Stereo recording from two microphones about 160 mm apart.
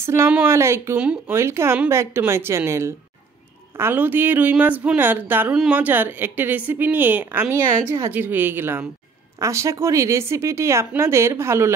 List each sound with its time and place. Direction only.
0.0 s speech: 15° right (ahead or behind)